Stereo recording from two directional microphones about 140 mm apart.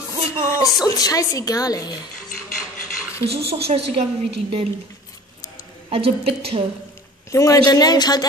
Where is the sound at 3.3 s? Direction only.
45° right (ahead or behind).